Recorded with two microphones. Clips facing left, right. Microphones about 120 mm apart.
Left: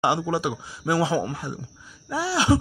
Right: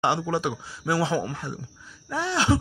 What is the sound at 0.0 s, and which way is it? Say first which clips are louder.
Speech: left 1 dB; 10° left (ahead or behind).